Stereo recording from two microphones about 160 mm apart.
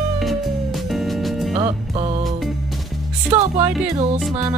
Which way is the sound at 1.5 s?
40° right (ahead or behind).